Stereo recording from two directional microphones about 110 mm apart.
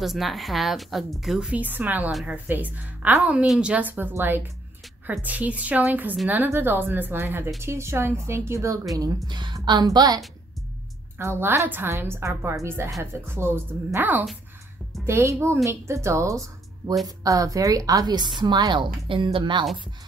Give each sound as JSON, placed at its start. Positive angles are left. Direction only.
{"t": 0.0, "sound": "a woman's voice", "side_deg": 0}
{"t": 11.1, "sound": "a woman's voice", "side_deg": -20}